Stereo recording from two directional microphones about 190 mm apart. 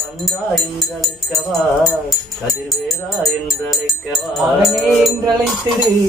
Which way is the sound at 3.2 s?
Centre (ahead or behind).